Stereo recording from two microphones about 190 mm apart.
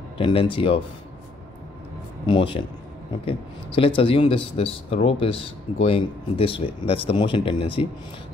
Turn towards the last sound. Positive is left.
turn(degrees=25)  # may be behind; listen again after turning